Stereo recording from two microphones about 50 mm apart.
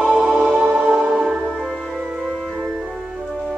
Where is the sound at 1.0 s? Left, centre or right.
Centre.